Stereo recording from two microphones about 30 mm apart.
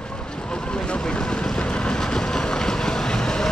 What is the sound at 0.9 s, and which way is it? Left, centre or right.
Vehicle, left.